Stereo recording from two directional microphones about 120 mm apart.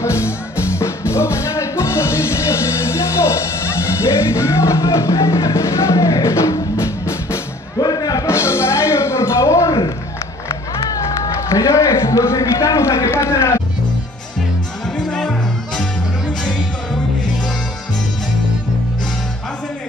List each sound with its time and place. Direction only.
0.0 s music: 25° left (ahead or behind)
10.9 s a sound: 30° left (ahead or behind)
15.0 s music: 5° left (ahead or behind)